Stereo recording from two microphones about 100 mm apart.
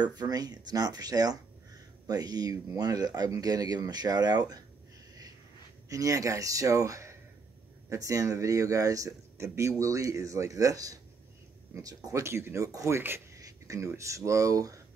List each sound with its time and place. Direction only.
0.0 s speech: 40° right (ahead or behind)
5.9 s speech: 35° right (ahead or behind)